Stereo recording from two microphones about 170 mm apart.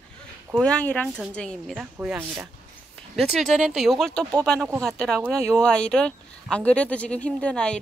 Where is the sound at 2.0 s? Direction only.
10° right (ahead or behind).